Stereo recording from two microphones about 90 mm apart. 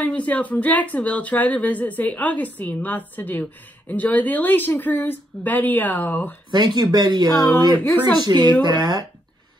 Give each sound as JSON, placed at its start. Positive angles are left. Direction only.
{"t": 0.0, "sound": "speech", "side_deg": 15}
{"t": 6.5, "sound": "speech", "side_deg": -55}
{"t": 7.7, "sound": "speech", "side_deg": 20}
{"t": 8.2, "sound": "speech", "side_deg": -50}